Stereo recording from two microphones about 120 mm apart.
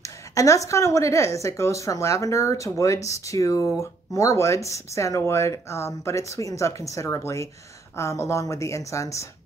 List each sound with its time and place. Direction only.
0.3 s a woman's voice: 25° left (ahead or behind)